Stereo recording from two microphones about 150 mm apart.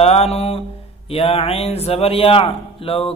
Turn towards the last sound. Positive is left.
turn(degrees=40)  # may be behind; listen again after turning